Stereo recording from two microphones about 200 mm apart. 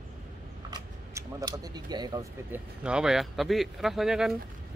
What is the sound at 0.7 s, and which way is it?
Speech, 15° right (ahead or behind).